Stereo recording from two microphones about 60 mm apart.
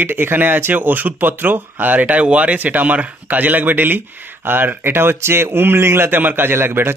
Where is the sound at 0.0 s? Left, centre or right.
Right.